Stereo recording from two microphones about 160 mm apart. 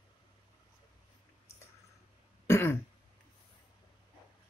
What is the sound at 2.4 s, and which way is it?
Throat clearing, 15° left (ahead or behind).